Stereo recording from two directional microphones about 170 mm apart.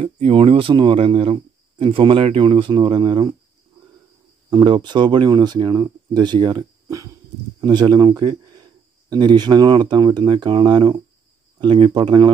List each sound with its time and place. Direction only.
0.0 s speech: 35° right (ahead or behind)
4.5 s speech: 25° right (ahead or behind)